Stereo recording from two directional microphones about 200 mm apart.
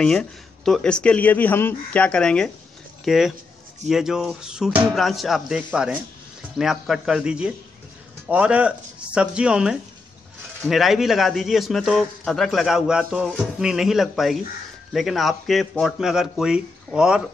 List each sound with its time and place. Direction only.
0.0 s speech: 5° left (ahead or behind)